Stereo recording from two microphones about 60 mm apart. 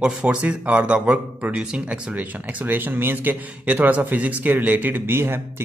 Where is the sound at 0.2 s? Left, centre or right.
Right.